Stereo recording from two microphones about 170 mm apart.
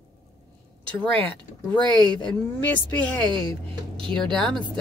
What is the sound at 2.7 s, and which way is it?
Speech, 10° left (ahead or behind).